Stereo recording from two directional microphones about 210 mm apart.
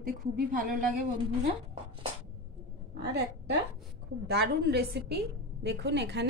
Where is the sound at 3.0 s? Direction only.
55° right (ahead or behind).